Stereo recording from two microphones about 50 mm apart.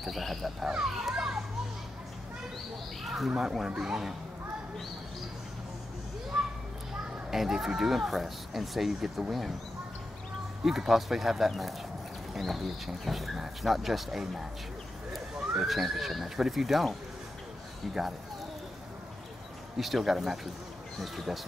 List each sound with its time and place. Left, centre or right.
0.0 s speech: centre
0.7 s children playing: centre
3.0 s a sound: centre
3.3 s speech: centre
6.3 s a sound: centre
7.2 s speech: centre
10.6 s speech: centre
15.3 s horse: centre
15.6 s speech: centre
19.8 s speech: centre